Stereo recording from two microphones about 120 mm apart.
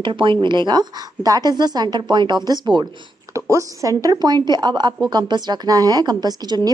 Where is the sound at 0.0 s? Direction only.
45° right (ahead or behind).